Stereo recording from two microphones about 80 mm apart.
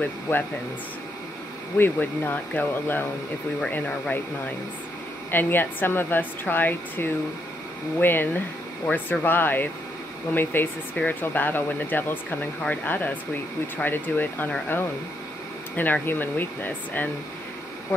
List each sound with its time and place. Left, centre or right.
1.8 s speech: left